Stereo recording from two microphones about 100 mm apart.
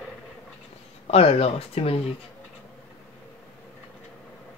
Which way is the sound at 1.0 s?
80° left.